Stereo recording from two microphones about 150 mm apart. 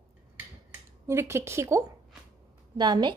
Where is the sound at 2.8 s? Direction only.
30° right (ahead or behind).